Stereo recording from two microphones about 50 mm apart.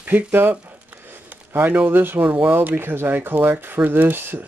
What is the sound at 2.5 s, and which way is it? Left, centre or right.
Speech, right.